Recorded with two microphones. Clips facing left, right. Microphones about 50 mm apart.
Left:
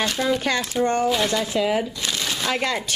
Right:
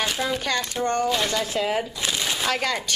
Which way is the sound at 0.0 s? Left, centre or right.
Centre.